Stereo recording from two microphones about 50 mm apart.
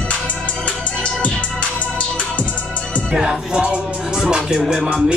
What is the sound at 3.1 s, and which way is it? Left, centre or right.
Music, centre.